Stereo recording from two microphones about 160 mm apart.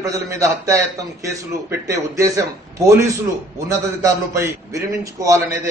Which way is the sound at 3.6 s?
20° right (ahead or behind).